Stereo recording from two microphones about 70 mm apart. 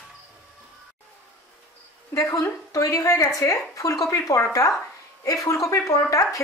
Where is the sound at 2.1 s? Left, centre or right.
Left.